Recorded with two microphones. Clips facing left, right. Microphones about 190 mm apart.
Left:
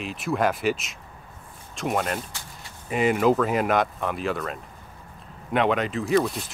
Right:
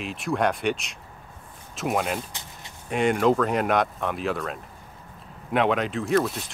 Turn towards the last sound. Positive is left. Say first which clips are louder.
# left 1 dB
turn(degrees=0)  # may be behind; listen again after turning